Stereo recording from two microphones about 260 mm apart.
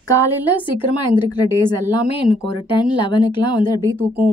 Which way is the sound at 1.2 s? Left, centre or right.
Centre.